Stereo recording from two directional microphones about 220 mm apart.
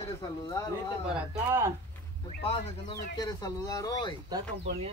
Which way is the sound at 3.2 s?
15° left (ahead or behind).